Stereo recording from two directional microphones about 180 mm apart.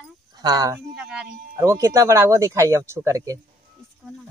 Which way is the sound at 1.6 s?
15° right (ahead or behind).